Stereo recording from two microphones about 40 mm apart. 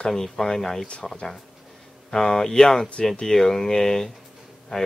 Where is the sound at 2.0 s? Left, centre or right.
Centre.